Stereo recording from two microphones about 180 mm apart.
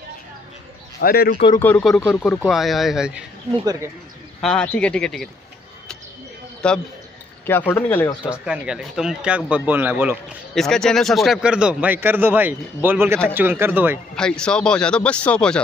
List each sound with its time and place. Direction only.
1.0 s speech: 55° left (ahead or behind)
1.6 s a man's voice: 5° left (ahead or behind)
4.4 s a man's voice: 5° left (ahead or behind)
6.6 s a man's voice: 5° left (ahead or behind)
8.3 s speech: 5° right (ahead or behind)
10.5 s a man's voice: centre (ahead or behind)
14.1 s a man's voice: 5° left (ahead or behind)